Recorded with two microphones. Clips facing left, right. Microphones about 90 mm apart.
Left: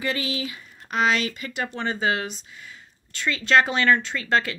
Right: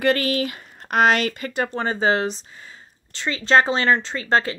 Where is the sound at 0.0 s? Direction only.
55° right (ahead or behind).